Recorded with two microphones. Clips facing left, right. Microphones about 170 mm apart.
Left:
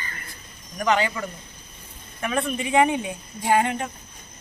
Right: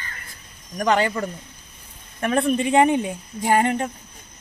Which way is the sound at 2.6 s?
35° right (ahead or behind).